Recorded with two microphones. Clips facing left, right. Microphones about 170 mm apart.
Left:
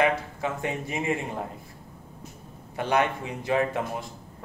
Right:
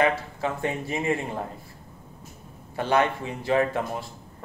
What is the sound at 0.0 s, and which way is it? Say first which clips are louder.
Speech: right 1 dB; 20° left (ahead or behind).